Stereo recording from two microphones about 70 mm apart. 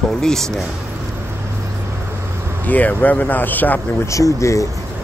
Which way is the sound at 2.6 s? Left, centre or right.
Left.